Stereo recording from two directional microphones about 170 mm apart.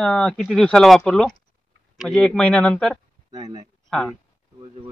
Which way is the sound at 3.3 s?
25° right (ahead or behind).